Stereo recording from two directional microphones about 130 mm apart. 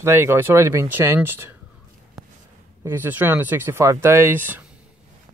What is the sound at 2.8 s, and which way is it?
Speech, 15° right (ahead or behind).